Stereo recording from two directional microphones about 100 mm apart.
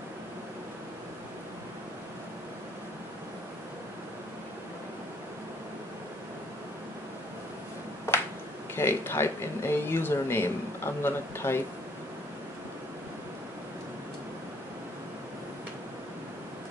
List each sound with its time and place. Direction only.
8.7 s speech: 25° left (ahead or behind)